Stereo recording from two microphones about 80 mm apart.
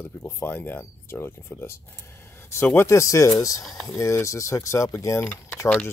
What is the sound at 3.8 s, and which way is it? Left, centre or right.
Speech, left.